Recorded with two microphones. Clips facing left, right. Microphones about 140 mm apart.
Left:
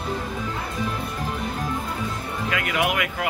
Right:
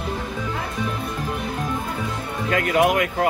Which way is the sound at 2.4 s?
40° right (ahead or behind).